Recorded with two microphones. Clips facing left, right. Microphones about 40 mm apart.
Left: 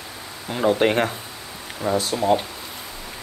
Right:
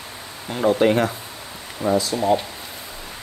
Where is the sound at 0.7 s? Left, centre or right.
Left.